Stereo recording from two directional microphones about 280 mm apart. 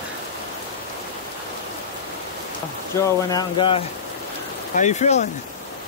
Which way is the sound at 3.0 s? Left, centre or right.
Centre.